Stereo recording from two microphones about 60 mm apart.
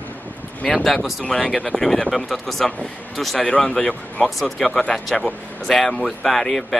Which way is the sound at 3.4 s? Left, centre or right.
Centre.